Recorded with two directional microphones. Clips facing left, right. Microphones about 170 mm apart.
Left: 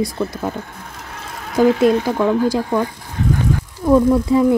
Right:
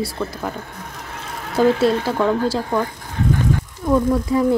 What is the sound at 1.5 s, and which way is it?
A woman's voice, 15° left (ahead or behind).